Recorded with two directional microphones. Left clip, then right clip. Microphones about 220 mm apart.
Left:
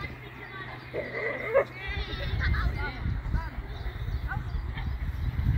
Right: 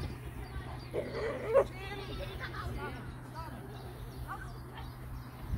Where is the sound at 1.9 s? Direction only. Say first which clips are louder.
Left 6 dB; 45° right (ahead or behind).